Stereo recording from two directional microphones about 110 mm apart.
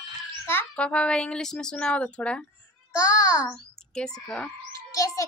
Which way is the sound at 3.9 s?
5° left (ahead or behind).